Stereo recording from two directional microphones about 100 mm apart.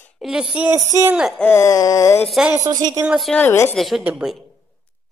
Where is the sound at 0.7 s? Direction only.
25° right (ahead or behind).